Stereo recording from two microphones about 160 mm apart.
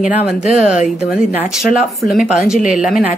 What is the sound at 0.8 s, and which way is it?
Speech, 50° left (ahead or behind).